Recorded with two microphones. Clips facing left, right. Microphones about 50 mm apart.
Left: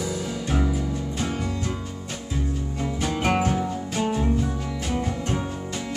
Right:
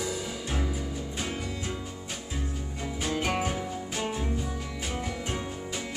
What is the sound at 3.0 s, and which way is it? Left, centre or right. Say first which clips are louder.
Music: left 4 dB; centre.